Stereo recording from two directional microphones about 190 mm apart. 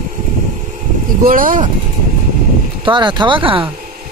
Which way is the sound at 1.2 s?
45° right (ahead or behind).